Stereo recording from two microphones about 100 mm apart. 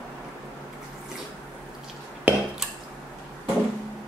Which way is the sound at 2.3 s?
20° right (ahead or behind).